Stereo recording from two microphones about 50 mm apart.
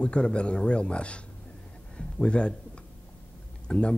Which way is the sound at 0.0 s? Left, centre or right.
Left.